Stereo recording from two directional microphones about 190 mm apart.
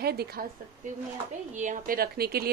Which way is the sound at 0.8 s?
40° right (ahead or behind).